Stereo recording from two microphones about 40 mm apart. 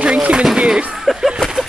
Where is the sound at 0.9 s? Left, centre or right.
Centre.